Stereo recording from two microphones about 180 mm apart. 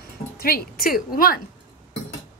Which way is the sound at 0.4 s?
55° left (ahead or behind).